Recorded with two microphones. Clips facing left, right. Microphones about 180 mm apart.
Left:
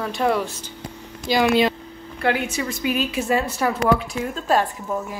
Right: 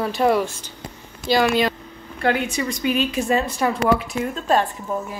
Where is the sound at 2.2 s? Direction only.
5° left (ahead or behind).